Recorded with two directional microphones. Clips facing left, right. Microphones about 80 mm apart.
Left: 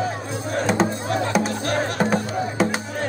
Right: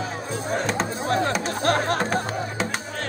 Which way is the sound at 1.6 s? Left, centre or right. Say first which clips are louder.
Right 2 dB; right.